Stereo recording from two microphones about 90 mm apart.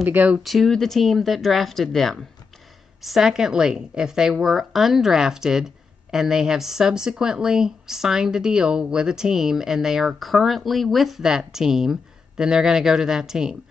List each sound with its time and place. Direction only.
0.0 s speech: 20° right (ahead or behind)
0.4 s speech: centre (ahead or behind)